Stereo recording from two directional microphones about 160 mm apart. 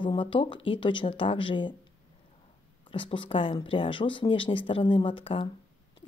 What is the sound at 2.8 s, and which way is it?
Speech, 30° left (ahead or behind).